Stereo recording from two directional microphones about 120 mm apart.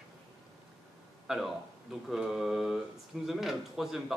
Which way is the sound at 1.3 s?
5° right (ahead or behind).